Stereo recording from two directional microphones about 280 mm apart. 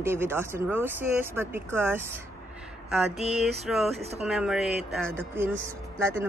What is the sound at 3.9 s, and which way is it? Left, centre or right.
Speech, right.